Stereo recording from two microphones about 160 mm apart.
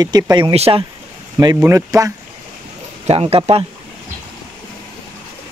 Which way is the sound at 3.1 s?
35° right (ahead or behind).